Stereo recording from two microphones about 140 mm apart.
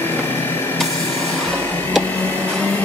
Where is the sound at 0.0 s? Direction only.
15° left (ahead or behind).